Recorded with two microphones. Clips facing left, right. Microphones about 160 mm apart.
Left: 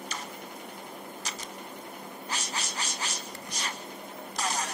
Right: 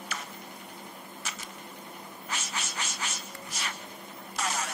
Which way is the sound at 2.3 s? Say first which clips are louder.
Even; 35° left (ahead or behind).